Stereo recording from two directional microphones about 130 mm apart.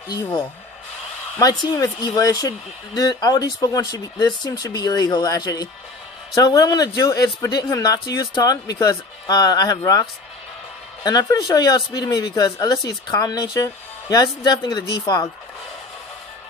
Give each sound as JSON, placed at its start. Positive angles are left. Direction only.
{"t": 1.4, "sound": "a man's voice", "side_deg": 25}
{"t": 11.1, "sound": "a man's voice", "side_deg": 30}